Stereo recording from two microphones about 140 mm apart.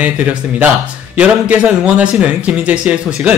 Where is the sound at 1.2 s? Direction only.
10° right (ahead or behind).